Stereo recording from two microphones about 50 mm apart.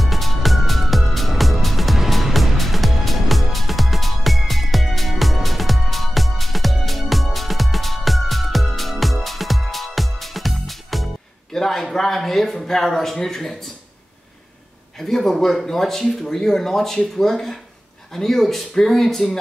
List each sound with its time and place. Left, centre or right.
0.0 s music: centre
11.5 s a sound: centre
15.0 s speech: centre